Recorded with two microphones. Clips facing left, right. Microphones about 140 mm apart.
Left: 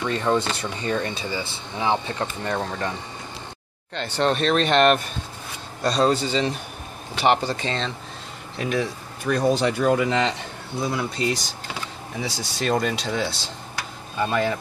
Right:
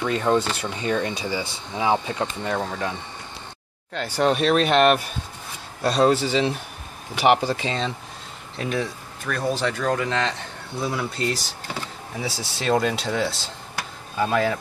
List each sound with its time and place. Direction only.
0.0 s speech: 10° right (ahead or behind)
9.2 s speech: 15° left (ahead or behind)
10.8 s speech: centre (ahead or behind)